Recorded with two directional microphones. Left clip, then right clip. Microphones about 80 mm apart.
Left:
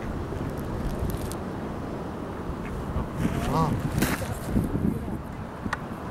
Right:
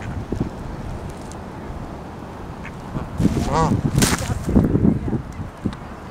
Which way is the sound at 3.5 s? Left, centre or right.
Right.